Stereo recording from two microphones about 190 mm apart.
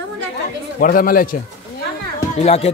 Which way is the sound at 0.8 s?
50° left (ahead or behind).